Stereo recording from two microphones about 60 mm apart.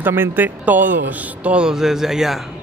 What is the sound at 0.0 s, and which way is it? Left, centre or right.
A man's voice, right.